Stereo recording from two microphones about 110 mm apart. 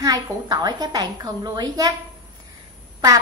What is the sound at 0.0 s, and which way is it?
A woman's voice, 35° right (ahead or behind).